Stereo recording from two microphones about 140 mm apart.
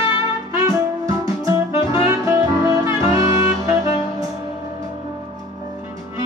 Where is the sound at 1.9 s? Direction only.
20° right (ahead or behind).